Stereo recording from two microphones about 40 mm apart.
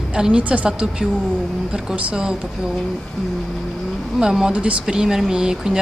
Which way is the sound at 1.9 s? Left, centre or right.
Right.